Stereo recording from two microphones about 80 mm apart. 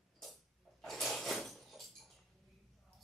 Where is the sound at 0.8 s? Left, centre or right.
Centre.